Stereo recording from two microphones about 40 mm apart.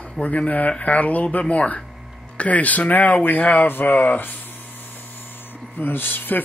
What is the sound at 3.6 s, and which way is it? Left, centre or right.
Speech, left.